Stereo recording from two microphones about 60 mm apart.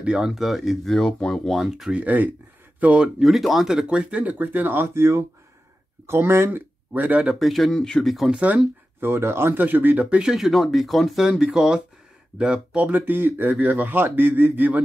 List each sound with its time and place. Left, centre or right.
0.0 s speech: centre
0.3 s speech: centre
1.9 s speech: right
3.2 s speech: centre; by 6.6 s right
6.9 s speech: right
7.3 s speech: centre
8.3 s speech: right
9.0 s speech: right
10.2 s speech: centre
11.2 s speech: centre; by 14.8 s right